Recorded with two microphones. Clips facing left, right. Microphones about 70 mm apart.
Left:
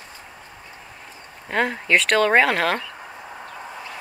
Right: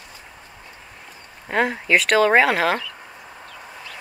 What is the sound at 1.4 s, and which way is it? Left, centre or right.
Speech, centre.